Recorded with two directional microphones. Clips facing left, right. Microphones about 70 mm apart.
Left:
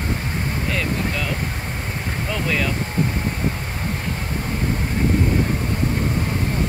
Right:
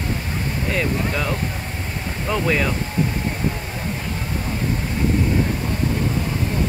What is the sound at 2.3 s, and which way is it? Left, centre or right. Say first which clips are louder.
Speech: right 4 dB; right.